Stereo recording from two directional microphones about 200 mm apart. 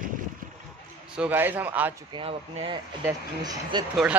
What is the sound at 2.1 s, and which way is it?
Speech, 25° right (ahead or behind).